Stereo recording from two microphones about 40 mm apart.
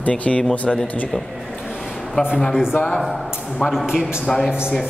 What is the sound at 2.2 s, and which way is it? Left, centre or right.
Speech, left.